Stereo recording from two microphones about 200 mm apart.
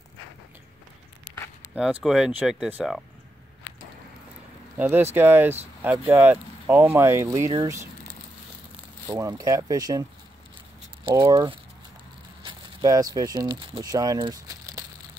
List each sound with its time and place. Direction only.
1.8 s speech: 5° right (ahead or behind)
4.7 s speech: 10° right (ahead or behind)
9.0 s speech: 15° right (ahead or behind)
11.1 s speech: 25° right (ahead or behind)